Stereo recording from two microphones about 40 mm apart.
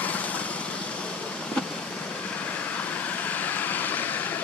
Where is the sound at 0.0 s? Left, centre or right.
Left.